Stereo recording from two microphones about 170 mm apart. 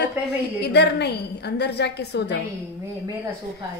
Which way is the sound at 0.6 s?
75° left (ahead or behind).